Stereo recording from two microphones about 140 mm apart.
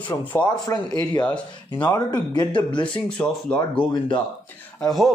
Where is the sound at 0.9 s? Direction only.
30° left (ahead or behind).